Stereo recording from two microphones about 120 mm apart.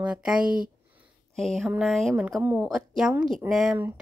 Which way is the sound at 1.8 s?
Centre (ahead or behind).